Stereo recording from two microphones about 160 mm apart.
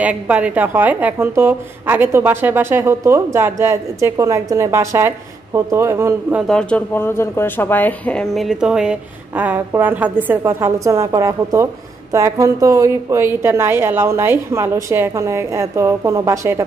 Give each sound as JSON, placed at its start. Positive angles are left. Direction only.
{"t": 0.0, "sound": "speech", "side_deg": -10}
{"t": 6.4, "sound": "speech", "side_deg": 5}